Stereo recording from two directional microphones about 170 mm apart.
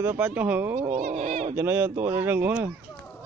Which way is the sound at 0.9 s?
45° right (ahead or behind).